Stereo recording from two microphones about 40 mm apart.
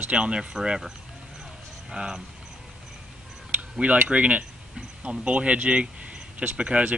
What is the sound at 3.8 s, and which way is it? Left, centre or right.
Speech, right.